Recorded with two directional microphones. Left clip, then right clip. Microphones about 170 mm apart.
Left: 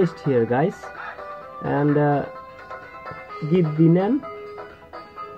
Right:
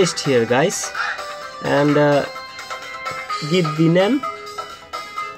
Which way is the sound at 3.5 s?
5° right (ahead or behind).